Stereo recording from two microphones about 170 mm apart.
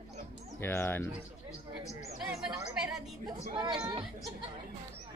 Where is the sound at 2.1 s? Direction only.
5° right (ahead or behind).